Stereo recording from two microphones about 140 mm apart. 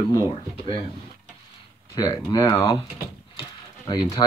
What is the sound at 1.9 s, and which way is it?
Speech, 25° left (ahead or behind).